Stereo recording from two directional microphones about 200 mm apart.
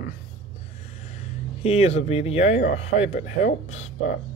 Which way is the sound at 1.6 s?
30° left (ahead or behind).